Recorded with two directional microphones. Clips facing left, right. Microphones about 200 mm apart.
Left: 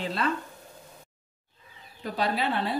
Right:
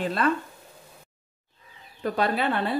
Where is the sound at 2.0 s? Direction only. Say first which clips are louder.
Right 3 dB; 55° right (ahead or behind).